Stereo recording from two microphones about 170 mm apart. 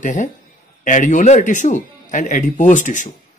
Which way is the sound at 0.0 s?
45° left (ahead or behind).